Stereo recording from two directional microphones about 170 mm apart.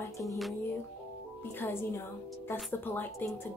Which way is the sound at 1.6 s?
15° left (ahead or behind).